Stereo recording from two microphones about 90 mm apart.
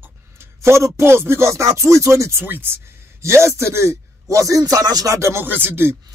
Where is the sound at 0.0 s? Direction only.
30° right (ahead or behind).